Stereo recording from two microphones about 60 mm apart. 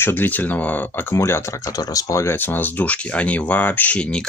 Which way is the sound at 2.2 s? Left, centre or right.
Left.